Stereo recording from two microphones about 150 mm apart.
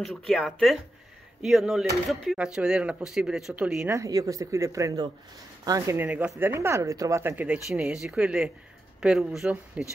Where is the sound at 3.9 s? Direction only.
20° right (ahead or behind).